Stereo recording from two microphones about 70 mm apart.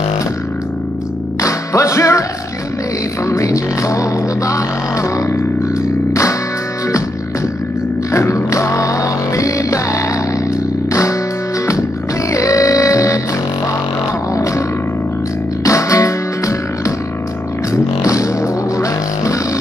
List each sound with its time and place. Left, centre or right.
1.4 s music: left
3.3 s music: left
8.1 s music: left
10.5 s a sound: left
12.3 s music: left
14.3 s music: left
15.6 s music: left